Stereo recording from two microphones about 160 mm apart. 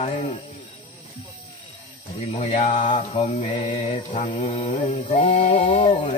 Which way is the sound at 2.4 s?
45° left (ahead or behind).